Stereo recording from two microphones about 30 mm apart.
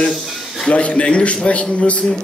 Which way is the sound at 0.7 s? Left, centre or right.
Left.